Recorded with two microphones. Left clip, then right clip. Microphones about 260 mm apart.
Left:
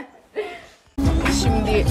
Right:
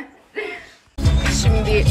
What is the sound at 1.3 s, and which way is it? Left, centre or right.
Music, centre.